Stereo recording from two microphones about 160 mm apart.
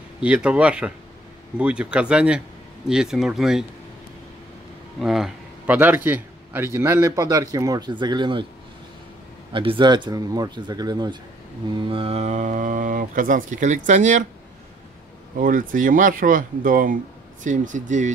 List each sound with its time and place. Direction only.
0.2 s a man's voice: 10° right (ahead or behind)
5.0 s a man's voice: centre (ahead or behind); by 8.5 s 30° right (ahead or behind)
9.5 s speech: 30° right (ahead or behind); by 14.2 s 50° right (ahead or behind)
15.3 s speech: 60° right (ahead or behind)